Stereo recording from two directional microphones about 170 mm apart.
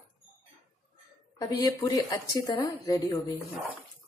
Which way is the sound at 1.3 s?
20° left (ahead or behind).